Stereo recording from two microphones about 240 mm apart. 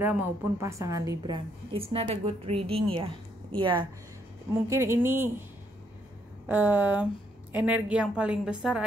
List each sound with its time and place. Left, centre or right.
0.0 s a woman's voice: centre
6.4 s a woman's voice: centre